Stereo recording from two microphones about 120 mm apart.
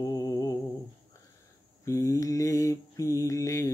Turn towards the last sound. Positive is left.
turn(degrees=25)  # may be behind; listen again after turning